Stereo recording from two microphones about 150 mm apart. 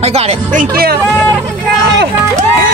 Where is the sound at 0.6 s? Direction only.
90° right.